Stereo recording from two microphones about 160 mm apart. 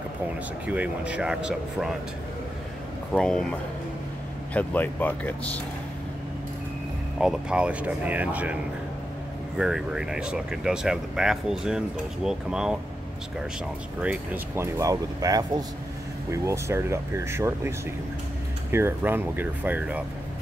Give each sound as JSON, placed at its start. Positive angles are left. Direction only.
{"t": 0.7, "sound": "speech", "side_deg": -10}
{"t": 3.1, "sound": "speech", "side_deg": 5}
{"t": 4.6, "sound": "speech", "side_deg": 10}
{"t": 7.2, "sound": "speech", "side_deg": -5}
{"t": 9.6, "sound": "speech", "side_deg": -5}
{"t": 14.0, "sound": "speech", "side_deg": -15}